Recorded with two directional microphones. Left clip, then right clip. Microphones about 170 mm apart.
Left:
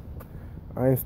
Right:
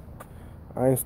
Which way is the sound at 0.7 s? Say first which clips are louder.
Right 1 dB; 10° right (ahead or behind).